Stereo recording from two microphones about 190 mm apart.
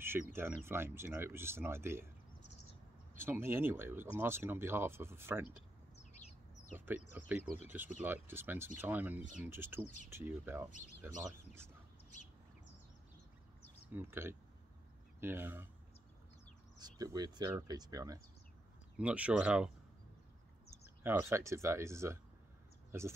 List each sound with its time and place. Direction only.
0.0 s speech: 10° right (ahead or behind)
3.2 s speech: 10° right (ahead or behind)
6.9 s speech: 10° right (ahead or behind)
13.9 s speech: 10° right (ahead or behind)
16.7 s speech: 20° right (ahead or behind)
18.9 s speech: 5° right (ahead or behind)
21.0 s speech: 10° right (ahead or behind)